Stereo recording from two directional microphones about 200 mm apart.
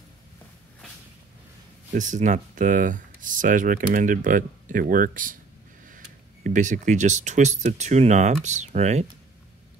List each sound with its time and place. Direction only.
1.9 s speech: 40° right (ahead or behind)